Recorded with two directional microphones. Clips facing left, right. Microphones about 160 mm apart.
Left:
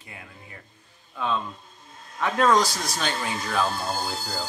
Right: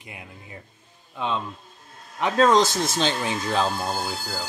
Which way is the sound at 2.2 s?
25° right (ahead or behind).